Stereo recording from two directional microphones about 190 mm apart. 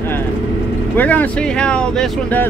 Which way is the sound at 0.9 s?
10° left (ahead or behind).